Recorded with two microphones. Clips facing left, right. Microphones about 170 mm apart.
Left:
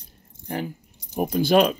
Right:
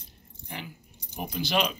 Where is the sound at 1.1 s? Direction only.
45° left (ahead or behind).